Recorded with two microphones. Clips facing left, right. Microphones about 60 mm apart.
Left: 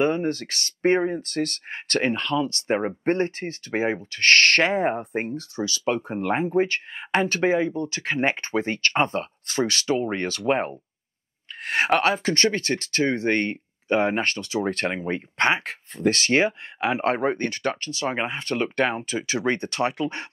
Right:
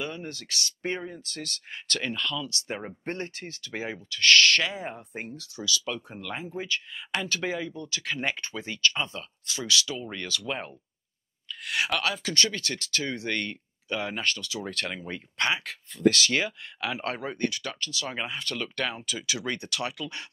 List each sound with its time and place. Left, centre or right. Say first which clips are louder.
0.0 s speech: left 13 dB; left